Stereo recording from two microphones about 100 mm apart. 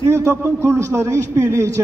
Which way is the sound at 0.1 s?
25° right (ahead or behind).